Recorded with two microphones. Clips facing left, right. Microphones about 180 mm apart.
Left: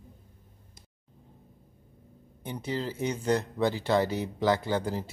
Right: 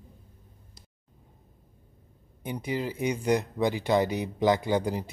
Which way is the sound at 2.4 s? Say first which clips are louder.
Right 2 dB; 15° right (ahead or behind).